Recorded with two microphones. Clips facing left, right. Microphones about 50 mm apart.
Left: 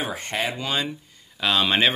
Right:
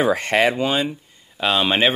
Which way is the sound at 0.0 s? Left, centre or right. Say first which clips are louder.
Right 10 dB; right.